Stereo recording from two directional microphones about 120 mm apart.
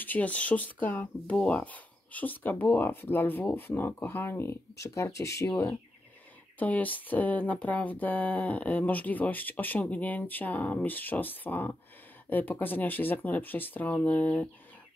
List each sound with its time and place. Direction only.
0.0 s speech: 15° left (ahead or behind)
6.6 s speech: 15° left (ahead or behind)